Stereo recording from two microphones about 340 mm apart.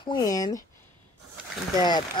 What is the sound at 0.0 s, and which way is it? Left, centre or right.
Speech, centre.